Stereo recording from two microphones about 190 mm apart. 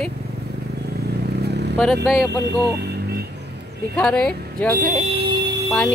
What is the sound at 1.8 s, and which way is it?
Speech, centre (ahead or behind).